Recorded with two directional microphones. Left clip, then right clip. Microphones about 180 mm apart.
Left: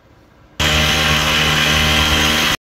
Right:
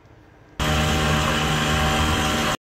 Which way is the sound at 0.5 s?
45° right (ahead or behind).